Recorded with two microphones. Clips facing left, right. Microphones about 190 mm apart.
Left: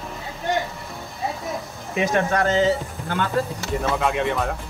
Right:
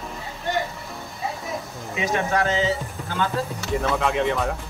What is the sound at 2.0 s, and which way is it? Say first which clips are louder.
Speech: left 2 dB; 60° left (ahead or behind).